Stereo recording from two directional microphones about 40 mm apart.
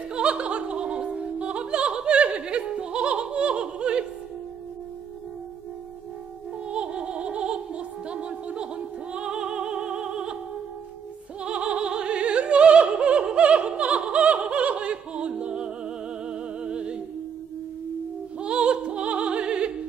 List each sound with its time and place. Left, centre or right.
0.1 s music: right
6.7 s music: right
11.4 s opera: right
16.3 s music: right
18.4 s opera: right